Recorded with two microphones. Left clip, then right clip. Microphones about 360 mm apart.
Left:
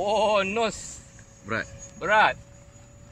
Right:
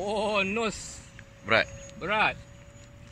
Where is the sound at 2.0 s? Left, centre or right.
Left.